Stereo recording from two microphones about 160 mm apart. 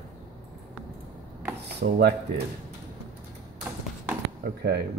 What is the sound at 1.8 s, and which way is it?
Speech, 90° right.